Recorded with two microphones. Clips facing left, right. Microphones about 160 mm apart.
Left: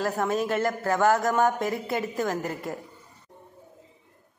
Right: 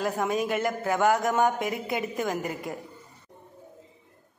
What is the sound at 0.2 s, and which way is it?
A woman's voice, 15° right (ahead or behind).